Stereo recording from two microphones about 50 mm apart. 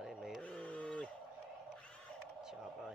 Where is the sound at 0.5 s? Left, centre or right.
Left.